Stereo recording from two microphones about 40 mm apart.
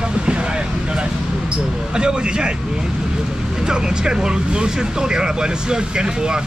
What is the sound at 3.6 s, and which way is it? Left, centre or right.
Speech, centre.